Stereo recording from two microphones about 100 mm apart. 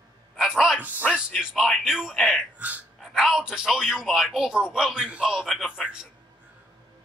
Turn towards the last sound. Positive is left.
turn(degrees=0)  # may be behind; listen again after turning